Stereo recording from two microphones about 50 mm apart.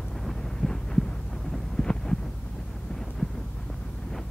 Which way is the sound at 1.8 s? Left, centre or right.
Centre.